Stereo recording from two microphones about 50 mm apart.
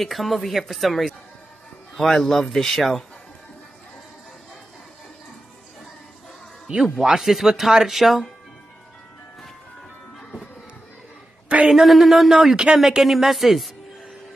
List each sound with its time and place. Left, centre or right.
0.0 s speech: centre
6.7 s speech: centre
11.4 s a sound: right
11.7 s speech: centre